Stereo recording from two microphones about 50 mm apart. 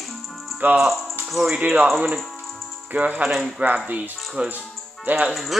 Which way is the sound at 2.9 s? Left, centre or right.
Right.